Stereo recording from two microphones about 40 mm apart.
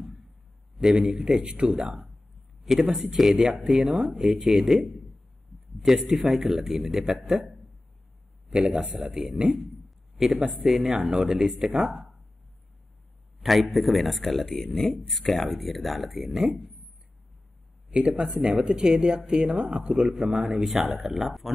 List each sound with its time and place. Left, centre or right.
0.7 s a man's voice: centre
2.6 s a man's voice: centre
8.5 s speech: right
9.1 s a man's voice: centre
9.8 s a sound: centre
10.5 s a man's voice: centre
13.4 s speech: centre
17.9 s speech: right
20.5 s a man's voice: centre